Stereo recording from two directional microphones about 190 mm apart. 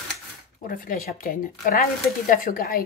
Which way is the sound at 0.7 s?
45° left (ahead or behind).